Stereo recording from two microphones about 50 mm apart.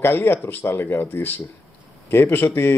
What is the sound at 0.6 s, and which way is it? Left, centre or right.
Speech, left.